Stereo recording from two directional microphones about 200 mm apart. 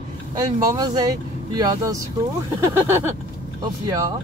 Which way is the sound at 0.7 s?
20° right (ahead or behind).